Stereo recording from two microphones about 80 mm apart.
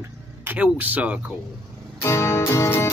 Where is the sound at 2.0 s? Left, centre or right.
Left.